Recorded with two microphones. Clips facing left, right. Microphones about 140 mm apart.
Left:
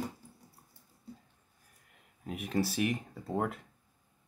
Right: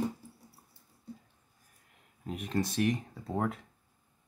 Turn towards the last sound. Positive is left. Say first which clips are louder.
# even
turn(degrees=5)  # may be behind; listen again after turning